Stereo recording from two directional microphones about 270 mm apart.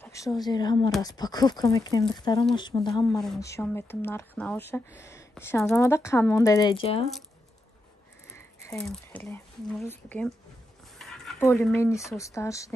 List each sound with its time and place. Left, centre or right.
0.0 s speech: centre
8.3 s speech: centre